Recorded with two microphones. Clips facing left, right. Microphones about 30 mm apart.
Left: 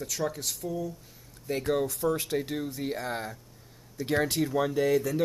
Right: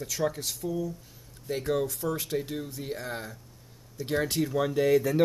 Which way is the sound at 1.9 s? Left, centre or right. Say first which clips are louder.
Left 2 dB; centre.